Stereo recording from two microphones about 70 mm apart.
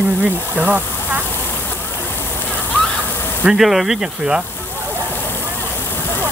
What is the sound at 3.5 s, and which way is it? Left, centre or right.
Speech, centre.